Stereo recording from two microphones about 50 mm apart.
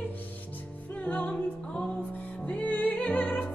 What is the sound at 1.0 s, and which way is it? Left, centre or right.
Music, left.